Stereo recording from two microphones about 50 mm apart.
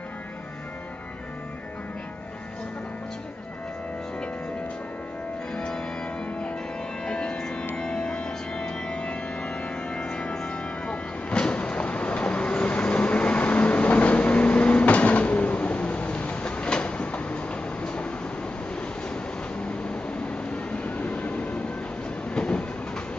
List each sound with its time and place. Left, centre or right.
5.5 s music: centre
7.1 s music: centre
7.7 s organ: centre
19.6 s train: left